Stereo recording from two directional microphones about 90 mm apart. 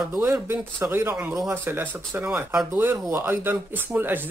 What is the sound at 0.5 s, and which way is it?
Speech, 25° right (ahead or behind).